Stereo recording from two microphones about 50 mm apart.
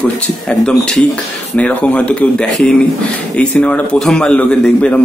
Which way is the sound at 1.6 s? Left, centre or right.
Left.